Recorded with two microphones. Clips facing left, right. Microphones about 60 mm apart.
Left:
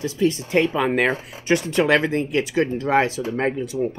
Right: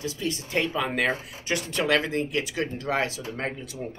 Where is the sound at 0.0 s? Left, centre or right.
Left.